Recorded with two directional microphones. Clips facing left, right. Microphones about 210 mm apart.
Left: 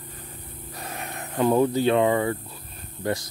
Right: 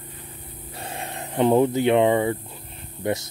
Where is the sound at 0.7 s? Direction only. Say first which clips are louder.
Right 2 dB; 30° right (ahead or behind).